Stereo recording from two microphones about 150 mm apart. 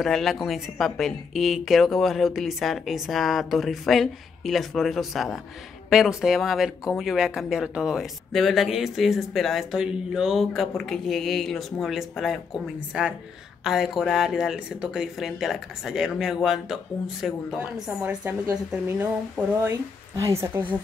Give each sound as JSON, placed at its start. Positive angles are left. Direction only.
{"t": 0.0, "sound": "speech", "side_deg": 0}
{"t": 18.7, "sound": "a woman's voice", "side_deg": -10}